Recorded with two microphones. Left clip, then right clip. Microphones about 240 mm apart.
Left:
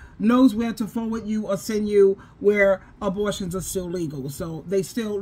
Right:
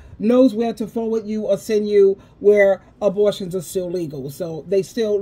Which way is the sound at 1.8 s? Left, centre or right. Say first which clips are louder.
Right 2 dB; left.